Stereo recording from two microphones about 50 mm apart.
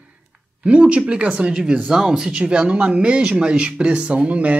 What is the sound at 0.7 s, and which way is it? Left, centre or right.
Speech, right.